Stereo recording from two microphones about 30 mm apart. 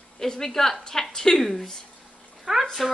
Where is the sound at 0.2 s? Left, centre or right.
Centre.